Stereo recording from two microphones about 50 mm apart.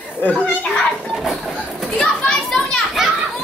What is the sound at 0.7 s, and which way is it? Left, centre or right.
Children playing, centre.